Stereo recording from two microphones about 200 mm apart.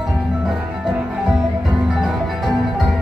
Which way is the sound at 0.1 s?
Centre (ahead or behind).